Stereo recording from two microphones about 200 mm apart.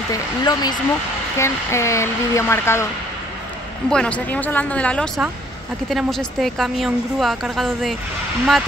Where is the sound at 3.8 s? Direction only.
5° left (ahead or behind).